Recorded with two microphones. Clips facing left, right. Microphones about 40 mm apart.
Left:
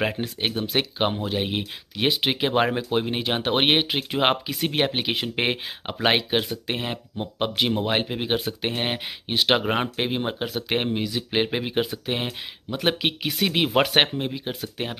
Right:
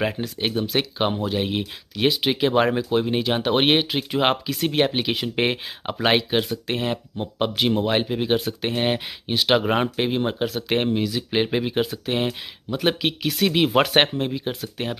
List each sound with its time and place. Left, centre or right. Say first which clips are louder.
0.4 s speech: right 2 dB; centre
13.7 s speech: left 1 dB; centre